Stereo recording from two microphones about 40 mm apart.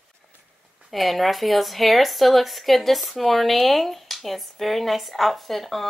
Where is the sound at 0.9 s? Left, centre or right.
Centre.